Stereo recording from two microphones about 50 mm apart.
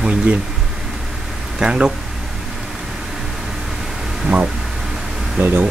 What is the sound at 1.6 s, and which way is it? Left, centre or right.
Speech, centre.